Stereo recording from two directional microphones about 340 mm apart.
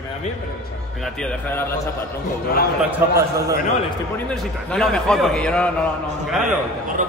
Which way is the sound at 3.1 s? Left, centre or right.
Centre.